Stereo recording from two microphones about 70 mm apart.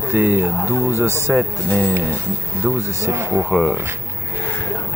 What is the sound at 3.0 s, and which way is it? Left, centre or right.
Speech, right.